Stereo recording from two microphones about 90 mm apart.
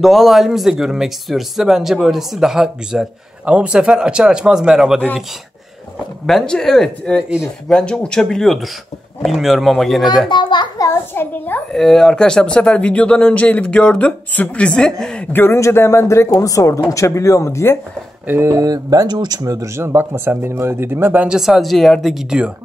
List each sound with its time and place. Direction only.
0.0 s speech: centre (ahead or behind)
6.2 s speech: 5° left (ahead or behind)
10.2 s a child's voice: 60° left (ahead or behind)
10.8 s speech: 30° left (ahead or behind)
11.7 s speech: 5° left (ahead or behind)
15.3 s speech: 25° left (ahead or behind)
18.2 s speech: 20° right (ahead or behind)
18.5 s speech: 40° right (ahead or behind); by 21.3 s 25° right (ahead or behind)
21.3 s speech: 5° right (ahead or behind)